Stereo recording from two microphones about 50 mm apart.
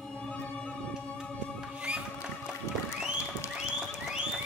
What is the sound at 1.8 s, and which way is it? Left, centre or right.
Music, right.